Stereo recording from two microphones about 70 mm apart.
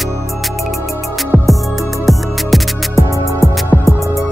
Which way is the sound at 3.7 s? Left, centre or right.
Right.